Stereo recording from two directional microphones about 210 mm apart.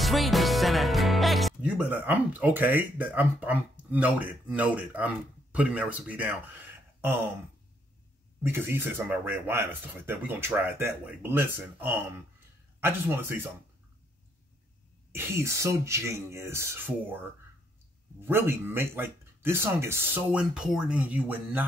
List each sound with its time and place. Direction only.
0.0 s speech: centre (ahead or behind)
8.4 s speech: 10° right (ahead or behind)
15.1 s speech: 10° right (ahead or behind)
18.2 s speech: 10° right (ahead or behind)